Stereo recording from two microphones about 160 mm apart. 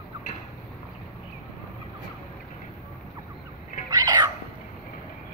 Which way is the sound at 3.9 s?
25° right (ahead or behind).